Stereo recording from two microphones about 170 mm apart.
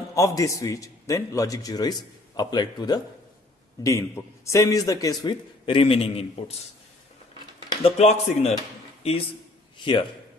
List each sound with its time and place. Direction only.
0.1 s a man's voice: 20° left (ahead or behind); by 6.5 s 35° left (ahead or behind)
7.8 s speech: 40° left (ahead or behind)